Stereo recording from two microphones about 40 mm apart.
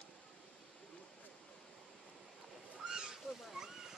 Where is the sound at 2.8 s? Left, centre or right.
Centre.